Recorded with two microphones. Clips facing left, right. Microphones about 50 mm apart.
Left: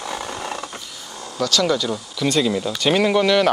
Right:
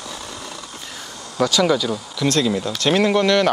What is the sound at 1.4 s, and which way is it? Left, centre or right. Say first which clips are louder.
Speech: right 2 dB; centre.